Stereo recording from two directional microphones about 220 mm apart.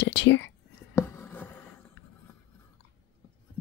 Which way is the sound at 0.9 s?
10° left (ahead or behind).